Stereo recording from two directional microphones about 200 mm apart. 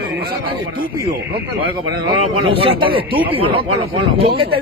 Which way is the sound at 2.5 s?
25° right (ahead or behind).